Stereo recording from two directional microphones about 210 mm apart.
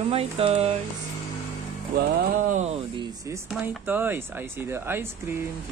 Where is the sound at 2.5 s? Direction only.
30° right (ahead or behind).